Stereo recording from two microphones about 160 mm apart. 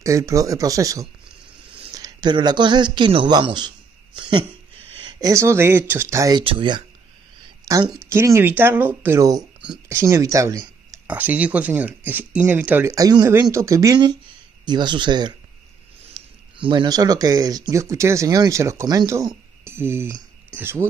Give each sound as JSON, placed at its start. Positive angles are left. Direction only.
{"t": 0.0, "sound": "speech", "side_deg": -20}
{"t": 1.7, "sound": "a sound", "side_deg": -30}
{"t": 5.2, "sound": "speech", "side_deg": -20}
{"t": 6.4, "sound": "speech", "side_deg": -30}
{"t": 7.6, "sound": "a woman's voice", "side_deg": -20}
{"t": 11.1, "sound": "speech", "side_deg": -10}
{"t": 12.9, "sound": "speech", "side_deg": -20}
{"t": 16.1, "sound": "a sound", "side_deg": -25}
{"t": 16.5, "sound": "speech", "side_deg": -30}